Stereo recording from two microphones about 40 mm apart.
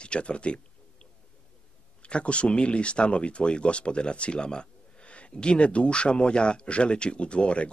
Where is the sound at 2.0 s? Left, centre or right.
Left.